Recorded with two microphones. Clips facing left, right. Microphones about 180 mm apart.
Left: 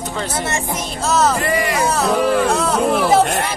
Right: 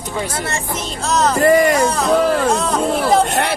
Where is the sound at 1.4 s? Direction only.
45° right (ahead or behind).